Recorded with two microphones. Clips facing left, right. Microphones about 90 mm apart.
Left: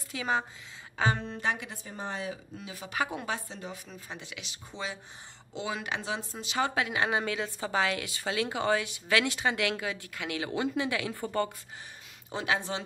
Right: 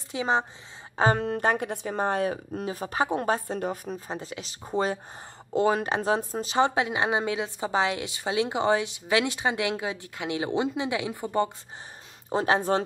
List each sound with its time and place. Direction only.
0.1 s speech: 25° right (ahead or behind)
1.1 s speech: 60° right (ahead or behind); by 11.5 s 20° right (ahead or behind)
12.3 s speech: 40° right (ahead or behind)